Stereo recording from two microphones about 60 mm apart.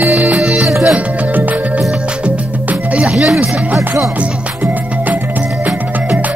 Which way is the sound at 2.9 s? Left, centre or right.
Centre.